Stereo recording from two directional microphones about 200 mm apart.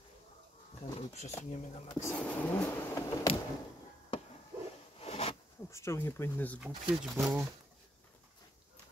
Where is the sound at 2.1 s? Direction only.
5° left (ahead or behind).